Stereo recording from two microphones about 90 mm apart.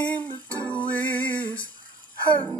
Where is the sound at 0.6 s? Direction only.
15° left (ahead or behind).